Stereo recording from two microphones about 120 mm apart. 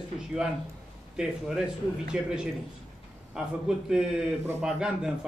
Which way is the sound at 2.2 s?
5° right (ahead or behind).